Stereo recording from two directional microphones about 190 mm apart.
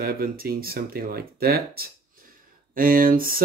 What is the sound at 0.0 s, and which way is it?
Speech, 50° right (ahead or behind).